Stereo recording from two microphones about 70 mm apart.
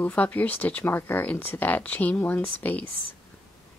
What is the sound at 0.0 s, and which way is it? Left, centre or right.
Speech, left.